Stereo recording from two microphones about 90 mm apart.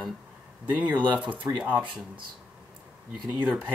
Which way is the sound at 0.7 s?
20° right (ahead or behind).